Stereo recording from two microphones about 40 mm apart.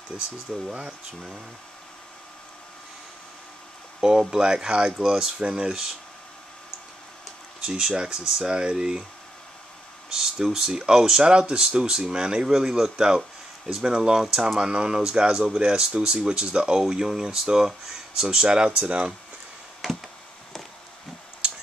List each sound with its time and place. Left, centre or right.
0.5 s speech: centre
4.0 s speech: centre
7.6 s speech: centre
10.0 s speech: centre; by 19.1 s right